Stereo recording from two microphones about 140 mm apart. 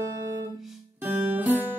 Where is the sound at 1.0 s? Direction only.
15° right (ahead or behind).